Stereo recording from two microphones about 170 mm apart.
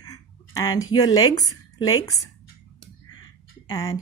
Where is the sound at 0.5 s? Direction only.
20° left (ahead or behind).